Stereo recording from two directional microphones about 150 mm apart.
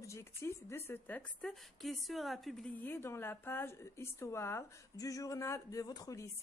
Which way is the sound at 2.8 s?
15° left (ahead or behind).